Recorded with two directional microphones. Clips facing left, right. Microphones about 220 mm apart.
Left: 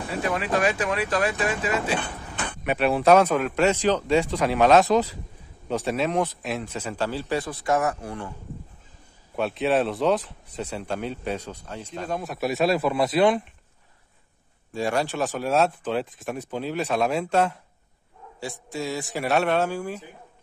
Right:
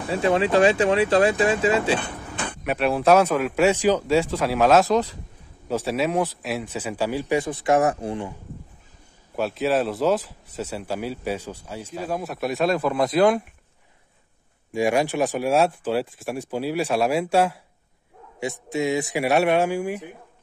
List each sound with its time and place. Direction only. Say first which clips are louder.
0.1 s speech: right 6 dB; 30° right (ahead or behind)
2.6 s speech: even; centre (ahead or behind); by 8.4 s 20° right (ahead or behind)
9.3 s speech: right 1 dB; centre (ahead or behind)
14.7 s speech: right 4 dB; 15° right (ahead or behind)
18.4 s speech: right 6 dB; 20° right (ahead or behind)